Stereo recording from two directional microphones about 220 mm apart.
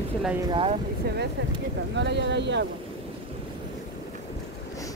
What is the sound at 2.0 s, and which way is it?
Speech, 50° right (ahead or behind).